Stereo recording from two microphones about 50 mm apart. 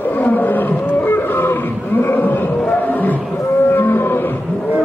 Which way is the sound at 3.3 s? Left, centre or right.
Left.